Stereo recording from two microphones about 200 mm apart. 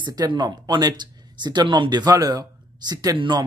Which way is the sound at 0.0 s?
20° right (ahead or behind).